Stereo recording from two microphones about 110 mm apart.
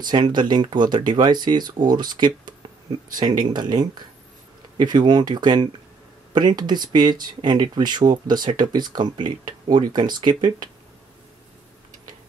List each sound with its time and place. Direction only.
0.0 s speech: 40° right (ahead or behind)